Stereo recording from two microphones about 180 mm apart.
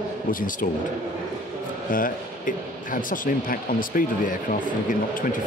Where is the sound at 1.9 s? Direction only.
50° left (ahead or behind).